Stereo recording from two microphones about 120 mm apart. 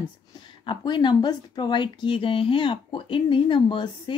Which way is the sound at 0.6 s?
40° left (ahead or behind).